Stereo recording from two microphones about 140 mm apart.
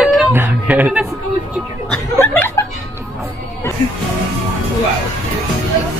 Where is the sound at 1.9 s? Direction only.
15° left (ahead or behind).